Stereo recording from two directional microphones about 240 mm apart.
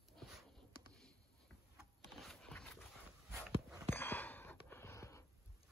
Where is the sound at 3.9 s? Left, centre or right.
Centre.